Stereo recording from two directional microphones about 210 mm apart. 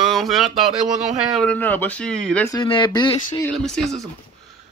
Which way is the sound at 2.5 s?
20° left (ahead or behind).